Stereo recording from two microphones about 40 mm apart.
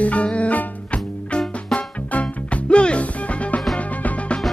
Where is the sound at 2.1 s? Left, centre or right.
Left.